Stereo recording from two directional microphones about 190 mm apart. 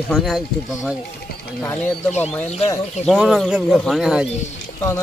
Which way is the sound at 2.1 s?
35° left (ahead or behind).